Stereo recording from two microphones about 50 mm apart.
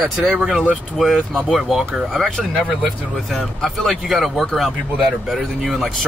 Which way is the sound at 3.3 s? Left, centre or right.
Centre.